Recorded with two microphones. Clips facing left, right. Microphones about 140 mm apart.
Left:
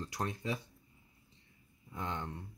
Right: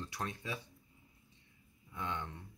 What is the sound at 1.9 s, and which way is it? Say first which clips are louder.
Speech: left 1 dB; 40° left (ahead or behind).